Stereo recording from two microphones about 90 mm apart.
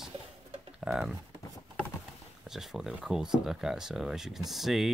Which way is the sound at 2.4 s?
5° right (ahead or behind).